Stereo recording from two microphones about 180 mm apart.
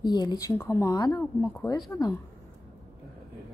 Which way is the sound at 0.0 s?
25° left (ahead or behind).